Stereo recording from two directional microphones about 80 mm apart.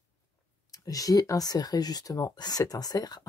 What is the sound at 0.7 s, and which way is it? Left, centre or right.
Speech, left.